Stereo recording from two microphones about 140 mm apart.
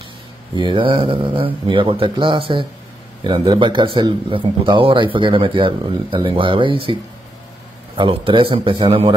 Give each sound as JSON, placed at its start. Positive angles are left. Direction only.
{"t": 0.6, "sound": "speech", "side_deg": -35}